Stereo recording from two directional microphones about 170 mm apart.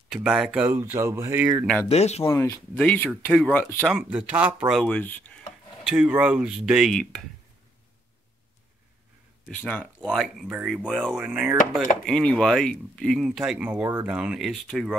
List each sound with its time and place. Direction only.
0.1 s speech: 5° right (ahead or behind)
1.9 s speech: 40° left (ahead or behind)
2.2 s speech: 15° left (ahead or behind)
3.9 s speech: 5° right (ahead or behind)
4.8 s speech: 10° left (ahead or behind)
5.9 s speech: 5° right (ahead or behind)
9.5 s speech: 10° left (ahead or behind)